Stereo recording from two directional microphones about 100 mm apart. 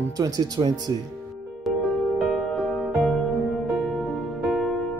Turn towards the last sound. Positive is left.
turn(degrees=-5)  # may be behind; listen again after turning